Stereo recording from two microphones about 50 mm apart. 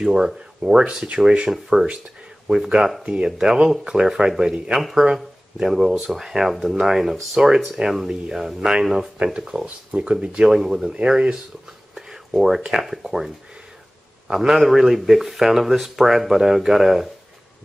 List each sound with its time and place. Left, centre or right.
0.0 s speech: centre
1.5 s a man's voice: centre